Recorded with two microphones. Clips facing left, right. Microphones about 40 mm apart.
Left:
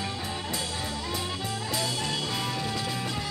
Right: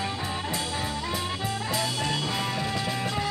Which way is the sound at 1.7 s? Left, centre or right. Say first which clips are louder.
Right 1 dB; centre.